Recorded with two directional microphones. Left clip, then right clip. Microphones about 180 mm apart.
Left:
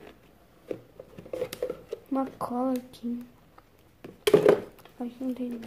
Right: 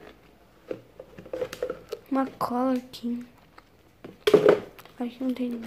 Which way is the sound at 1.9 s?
Centre (ahead or behind).